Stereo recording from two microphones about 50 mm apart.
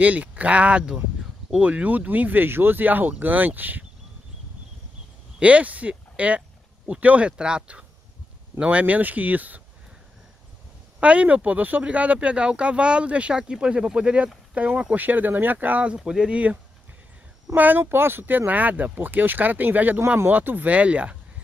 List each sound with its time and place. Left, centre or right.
0.0 s speech: right
5.4 s speech: right
11.0 s speech: right
15.0 s speech: right
16.0 s speech: centre
17.6 s speech: right